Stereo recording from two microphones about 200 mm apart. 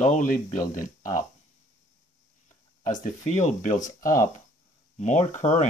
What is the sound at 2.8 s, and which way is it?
Speech, 40° left (ahead or behind).